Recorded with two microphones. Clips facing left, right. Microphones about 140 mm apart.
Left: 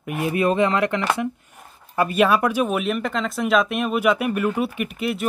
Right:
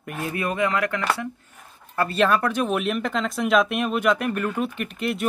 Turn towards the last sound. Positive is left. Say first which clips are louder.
# left 1 dB
turn(degrees=0)  # may be behind; listen again after turning